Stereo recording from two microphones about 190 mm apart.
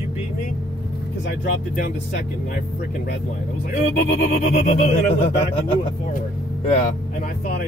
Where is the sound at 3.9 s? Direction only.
65° left (ahead or behind).